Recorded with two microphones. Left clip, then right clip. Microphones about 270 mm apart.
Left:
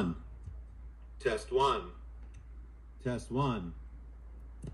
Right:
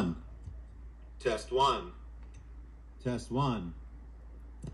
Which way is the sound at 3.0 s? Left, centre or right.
Centre.